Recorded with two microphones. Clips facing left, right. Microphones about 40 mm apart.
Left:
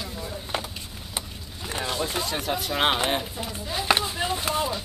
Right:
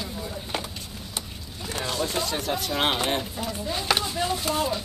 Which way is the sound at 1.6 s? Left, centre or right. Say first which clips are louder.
Even; centre.